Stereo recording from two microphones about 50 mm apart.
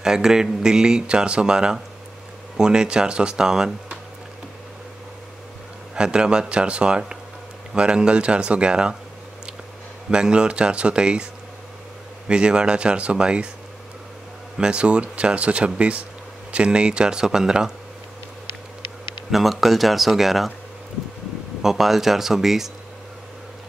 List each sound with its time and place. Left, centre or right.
0.0 s speech: centre
5.9 s speech: centre
10.1 s speech: centre
12.3 s speech: centre
14.6 s speech: centre
19.3 s speech: centre
21.6 s speech: centre